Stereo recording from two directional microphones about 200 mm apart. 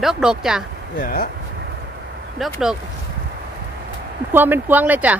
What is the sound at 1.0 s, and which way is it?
Speech, 45° left (ahead or behind).